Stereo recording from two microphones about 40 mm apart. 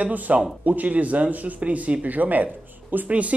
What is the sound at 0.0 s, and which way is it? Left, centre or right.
Speech, right.